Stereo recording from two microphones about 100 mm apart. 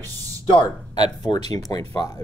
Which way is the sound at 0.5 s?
50° left (ahead or behind).